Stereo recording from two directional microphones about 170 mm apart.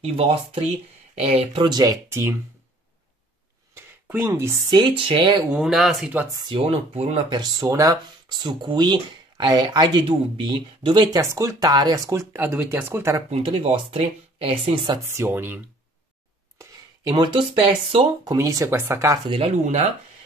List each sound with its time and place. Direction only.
0.0 s speech: 35° right (ahead or behind); by 2.4 s 15° right (ahead or behind)
3.7 s speech: 15° right (ahead or behind); by 5.4 s 30° right (ahead or behind)
5.5 s speech: centre (ahead or behind)
6.5 s speech: 35° right (ahead or behind)
7.3 s speech: 20° right (ahead or behind)
13.3 s speech: 35° right (ahead or behind)
15.1 s speech: 15° right (ahead or behind)
16.5 s speech: 25° right (ahead or behind)
18.2 s speech: 20° right (ahead or behind)
19.2 s speech: 35° right (ahead or behind)